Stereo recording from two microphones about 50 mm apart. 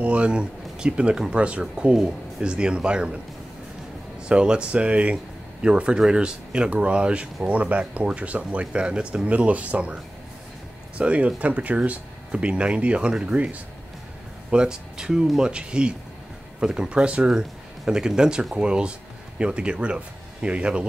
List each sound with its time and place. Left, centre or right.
0.0 s speech: right
4.3 s speech: centre
11.0 s speech: right
14.5 s speech: centre